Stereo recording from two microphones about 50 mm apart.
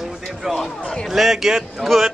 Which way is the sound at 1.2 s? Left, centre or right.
Centre.